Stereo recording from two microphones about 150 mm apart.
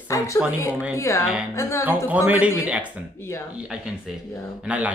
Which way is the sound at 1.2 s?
5° right (ahead or behind).